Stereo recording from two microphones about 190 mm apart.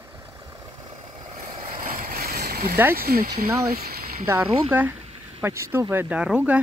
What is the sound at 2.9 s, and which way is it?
Speech, 50° right (ahead or behind).